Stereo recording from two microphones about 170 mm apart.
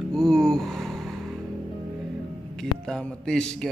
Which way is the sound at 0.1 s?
5° left (ahead or behind).